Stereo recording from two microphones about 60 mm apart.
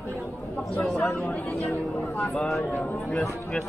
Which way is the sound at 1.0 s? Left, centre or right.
Left.